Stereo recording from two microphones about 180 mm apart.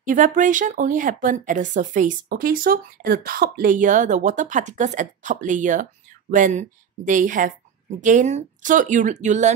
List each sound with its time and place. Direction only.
0.0 s speech: 45° right (ahead or behind)